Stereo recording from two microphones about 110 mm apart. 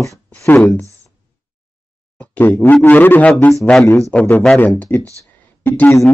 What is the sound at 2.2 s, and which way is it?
Speech, 15° left (ahead or behind).